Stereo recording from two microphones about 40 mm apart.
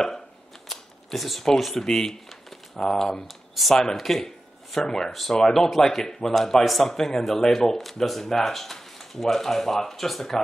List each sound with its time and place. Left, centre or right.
0.7 s camera: centre
1.4 s speech: centre
4.8 s speech: centre